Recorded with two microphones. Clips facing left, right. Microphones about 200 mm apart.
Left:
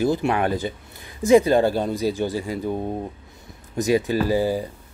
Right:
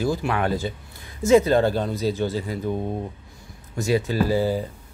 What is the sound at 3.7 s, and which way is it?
Speech, 15° left (ahead or behind).